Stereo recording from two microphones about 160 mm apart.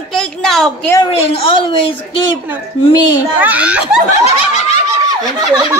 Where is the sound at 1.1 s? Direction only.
35° left (ahead or behind).